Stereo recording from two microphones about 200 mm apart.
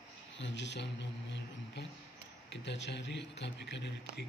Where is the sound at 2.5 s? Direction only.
60° left (ahead or behind).